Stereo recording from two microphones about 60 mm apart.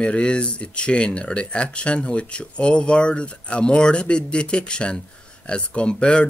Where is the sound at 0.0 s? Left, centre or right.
Centre.